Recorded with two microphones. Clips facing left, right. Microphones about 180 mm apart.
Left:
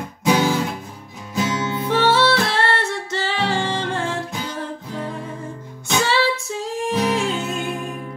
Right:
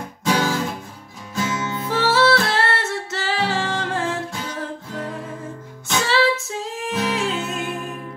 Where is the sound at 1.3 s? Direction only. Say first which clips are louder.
Left 2 dB; 15° left (ahead or behind).